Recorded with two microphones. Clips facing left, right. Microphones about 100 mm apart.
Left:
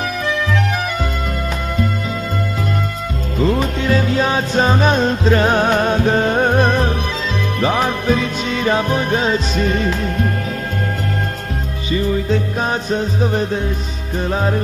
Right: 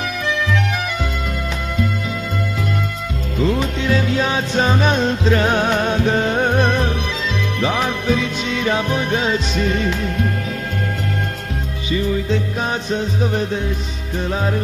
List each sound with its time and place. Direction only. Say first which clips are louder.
0.0 s music: left 2 dB; 40° left (ahead or behind)
3.3 s music: left 2 dB; 45° left (ahead or behind)
11.9 s music: left 2 dB; 40° left (ahead or behind)